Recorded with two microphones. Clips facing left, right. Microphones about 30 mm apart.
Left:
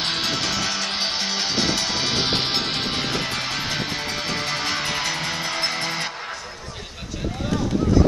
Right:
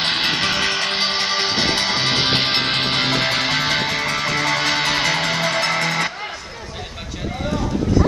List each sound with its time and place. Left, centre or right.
0.0 s music: right
3.1 s music: right